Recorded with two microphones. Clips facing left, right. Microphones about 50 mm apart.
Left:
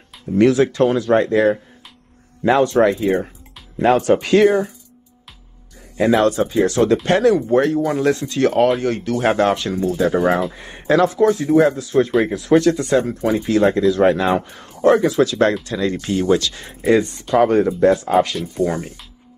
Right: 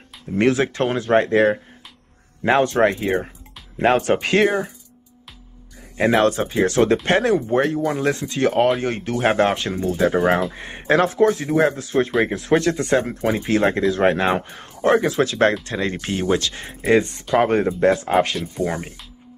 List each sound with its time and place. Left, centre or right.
0.4 s speech: right
4.0 s speech: right
5.9 s speech: right
9.1 s speech: centre
9.4 s speech: right
18.6 s speech: centre